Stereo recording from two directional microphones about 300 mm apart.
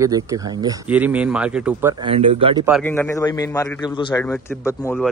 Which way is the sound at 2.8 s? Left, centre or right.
Centre.